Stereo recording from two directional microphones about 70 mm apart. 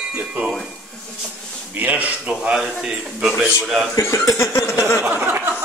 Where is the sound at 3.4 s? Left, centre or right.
Centre.